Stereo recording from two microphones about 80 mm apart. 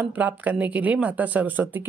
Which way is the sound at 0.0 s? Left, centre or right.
Right.